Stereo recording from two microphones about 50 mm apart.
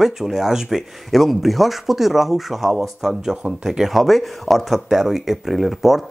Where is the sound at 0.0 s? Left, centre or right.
Centre.